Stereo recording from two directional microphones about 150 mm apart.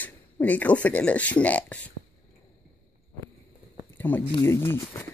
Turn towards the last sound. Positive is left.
turn(degrees=15)  # may be behind; listen again after turning